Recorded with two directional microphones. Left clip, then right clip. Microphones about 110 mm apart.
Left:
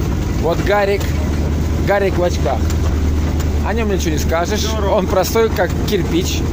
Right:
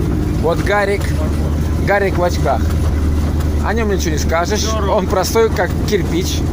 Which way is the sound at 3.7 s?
25° left (ahead or behind).